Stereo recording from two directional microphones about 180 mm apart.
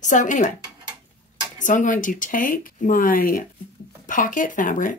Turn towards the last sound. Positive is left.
turn(degrees=50)  # may be behind; listen again after turning